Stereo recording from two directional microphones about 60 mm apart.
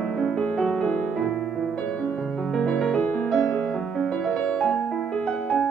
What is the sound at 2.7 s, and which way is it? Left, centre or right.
Music, centre.